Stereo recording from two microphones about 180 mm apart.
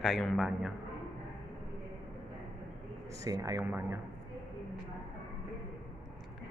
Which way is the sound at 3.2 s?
20° right (ahead or behind).